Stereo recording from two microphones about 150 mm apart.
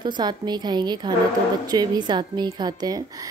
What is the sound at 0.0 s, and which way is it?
Speech, 30° right (ahead or behind).